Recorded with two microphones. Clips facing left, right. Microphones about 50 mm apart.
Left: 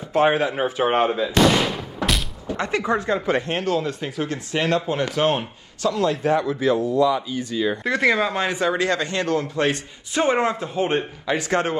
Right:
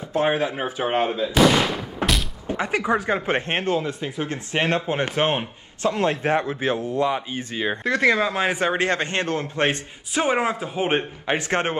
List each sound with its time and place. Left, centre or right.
0.1 s speech: left
1.3 s fireworks: centre
2.0 s a sound: right
2.5 s speech: centre
3.3 s a man's voice: right
7.8 s speech: centre
8.5 s a man's voice: right
10.1 s speech: centre
11.0 s a man's voice: right